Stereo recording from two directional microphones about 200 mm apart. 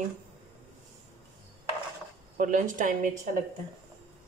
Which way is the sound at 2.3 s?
40° right (ahead or behind).